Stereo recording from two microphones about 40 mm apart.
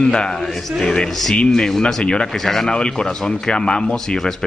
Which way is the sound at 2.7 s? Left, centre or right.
Left.